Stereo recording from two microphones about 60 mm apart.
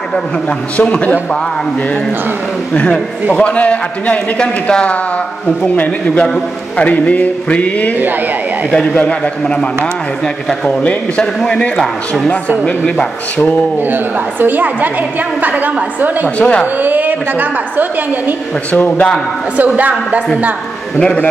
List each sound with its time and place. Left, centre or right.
0.1 s a man's voice: centre
2.7 s a man's voice: centre
13.7 s a woman's voice: right
16.3 s speech: centre
16.7 s a woman's voice: right
18.7 s a man's voice: left
19.5 s a woman's voice: right
21.0 s a man's voice: left